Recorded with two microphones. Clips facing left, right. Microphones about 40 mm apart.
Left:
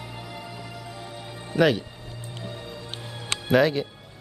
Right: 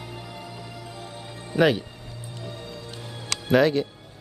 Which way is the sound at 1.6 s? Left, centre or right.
Centre.